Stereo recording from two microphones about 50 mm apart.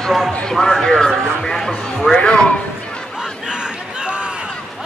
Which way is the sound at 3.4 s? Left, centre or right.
Centre.